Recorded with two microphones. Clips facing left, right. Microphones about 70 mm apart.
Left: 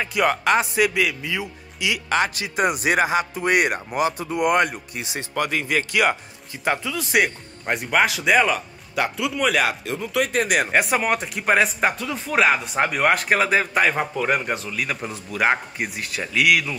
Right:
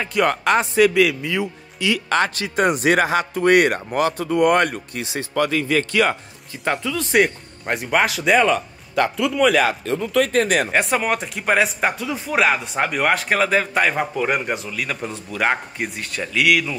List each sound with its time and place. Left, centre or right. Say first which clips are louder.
0.0 s speech: right 1 dB; centre